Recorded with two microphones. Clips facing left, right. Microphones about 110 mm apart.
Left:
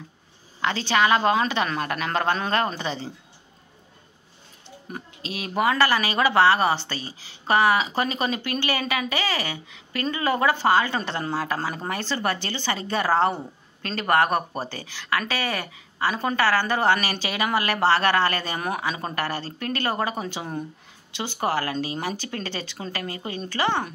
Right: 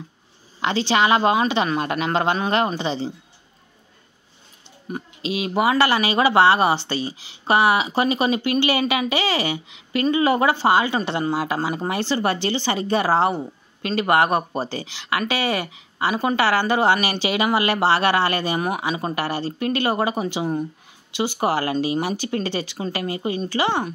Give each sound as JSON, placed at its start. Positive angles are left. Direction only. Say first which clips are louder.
{"t": 0.6, "sound": "a woman's voice", "louder": "right 3 dB", "side_deg": -20}
{"t": 4.9, "sound": "speech", "louder": "right 8 dB", "side_deg": -20}